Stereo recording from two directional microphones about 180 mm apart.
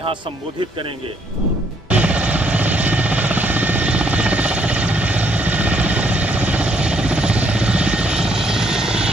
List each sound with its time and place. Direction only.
1.9 s helicopter: 10° right (ahead or behind)